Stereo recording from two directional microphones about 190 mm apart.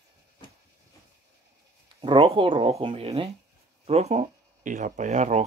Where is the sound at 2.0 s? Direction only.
30° right (ahead or behind).